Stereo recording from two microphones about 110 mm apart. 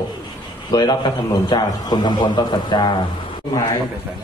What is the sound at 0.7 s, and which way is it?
A man's voice, 40° left (ahead or behind).